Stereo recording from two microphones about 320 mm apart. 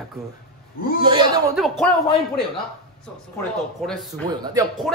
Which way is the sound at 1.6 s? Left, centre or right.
Centre.